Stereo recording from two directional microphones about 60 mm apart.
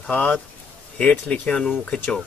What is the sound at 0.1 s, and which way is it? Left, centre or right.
Speech, left.